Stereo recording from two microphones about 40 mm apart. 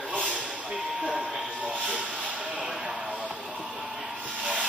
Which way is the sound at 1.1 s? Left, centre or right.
Centre.